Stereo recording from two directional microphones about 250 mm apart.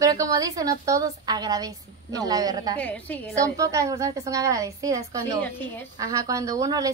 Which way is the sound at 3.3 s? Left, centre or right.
Centre.